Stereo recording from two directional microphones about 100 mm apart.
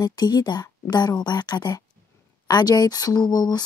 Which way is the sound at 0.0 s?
40° left (ahead or behind).